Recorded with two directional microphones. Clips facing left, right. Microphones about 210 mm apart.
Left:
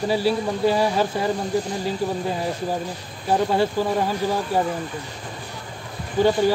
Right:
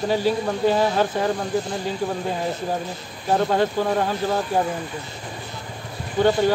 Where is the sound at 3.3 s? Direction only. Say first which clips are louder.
Even; 10° left (ahead or behind).